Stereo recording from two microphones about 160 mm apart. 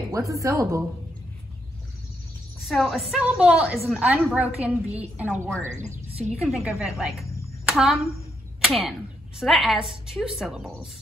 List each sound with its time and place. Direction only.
0.1 s speech: 20° right (ahead or behind)
2.6 s a woman's voice: centre (ahead or behind)